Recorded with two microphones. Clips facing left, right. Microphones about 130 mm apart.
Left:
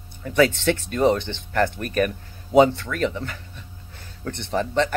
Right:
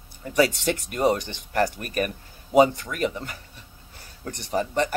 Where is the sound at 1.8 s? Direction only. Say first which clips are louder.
Left 5 dB; 40° left (ahead or behind).